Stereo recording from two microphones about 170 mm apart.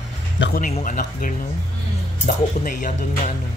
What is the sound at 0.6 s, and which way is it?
Speech, 50° left (ahead or behind).